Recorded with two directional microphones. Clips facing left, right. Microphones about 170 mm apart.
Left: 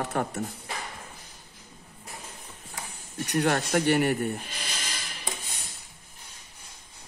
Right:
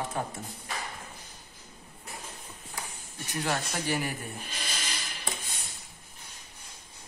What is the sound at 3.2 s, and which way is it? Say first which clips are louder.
Speech: left 6 dB; 65° left (ahead or behind).